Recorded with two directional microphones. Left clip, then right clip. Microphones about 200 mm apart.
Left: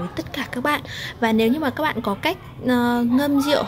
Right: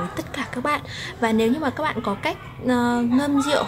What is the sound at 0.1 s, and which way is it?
A woman's voice, 25° left (ahead or behind).